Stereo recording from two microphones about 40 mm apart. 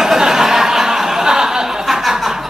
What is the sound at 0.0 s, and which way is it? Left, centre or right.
Chuckle, centre.